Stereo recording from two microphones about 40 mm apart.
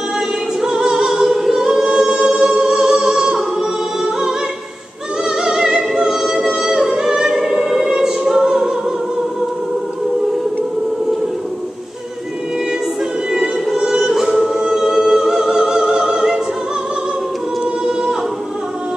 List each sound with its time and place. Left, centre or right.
0.6 s choir: centre
5.3 s opera: centre
5.8 s singing: centre
13.3 s music: centre